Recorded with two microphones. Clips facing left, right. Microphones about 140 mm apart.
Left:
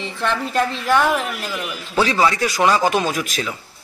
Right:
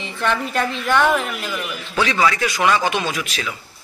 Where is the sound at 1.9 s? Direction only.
35° left (ahead or behind).